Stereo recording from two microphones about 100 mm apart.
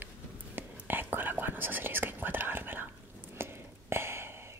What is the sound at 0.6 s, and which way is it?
Whispering, 20° right (ahead or behind).